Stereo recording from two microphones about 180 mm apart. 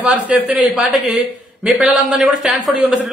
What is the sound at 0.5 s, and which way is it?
A man's voice, 5° right (ahead or behind).